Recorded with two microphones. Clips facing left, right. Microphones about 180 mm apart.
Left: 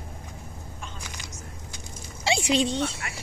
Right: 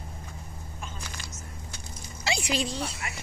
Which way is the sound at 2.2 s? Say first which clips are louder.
Left 6 dB; 30° left (ahead or behind).